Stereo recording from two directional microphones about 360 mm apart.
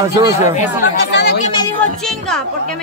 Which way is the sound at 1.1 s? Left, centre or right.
Left.